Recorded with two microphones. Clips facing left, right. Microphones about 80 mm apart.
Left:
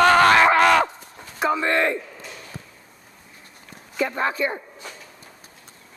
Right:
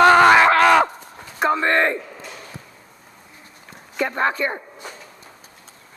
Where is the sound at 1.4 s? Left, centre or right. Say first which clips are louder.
Right 2 dB; centre.